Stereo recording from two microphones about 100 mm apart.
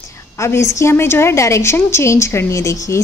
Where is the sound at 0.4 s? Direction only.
30° left (ahead or behind).